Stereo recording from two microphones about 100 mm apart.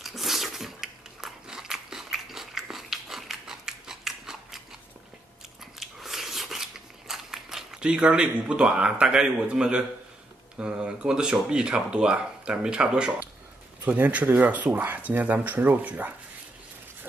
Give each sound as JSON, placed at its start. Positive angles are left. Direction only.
{"t": 0.0, "sound": "biting", "side_deg": 0}
{"t": 5.8, "sound": "scissors", "side_deg": 0}
{"t": 10.6, "sound": "speech", "side_deg": -10}